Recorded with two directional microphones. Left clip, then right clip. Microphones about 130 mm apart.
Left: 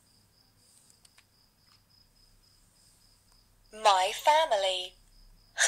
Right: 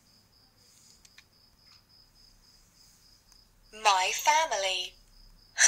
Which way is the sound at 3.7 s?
70° left (ahead or behind).